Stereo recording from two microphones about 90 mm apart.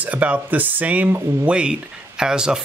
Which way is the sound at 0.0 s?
15° right (ahead or behind).